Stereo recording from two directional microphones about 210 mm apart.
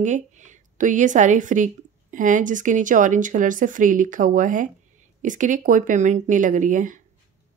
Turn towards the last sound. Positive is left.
turn(degrees=-35)  # may be behind; listen again after turning